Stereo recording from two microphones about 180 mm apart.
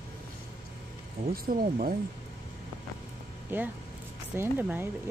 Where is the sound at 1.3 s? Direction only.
50° right (ahead or behind).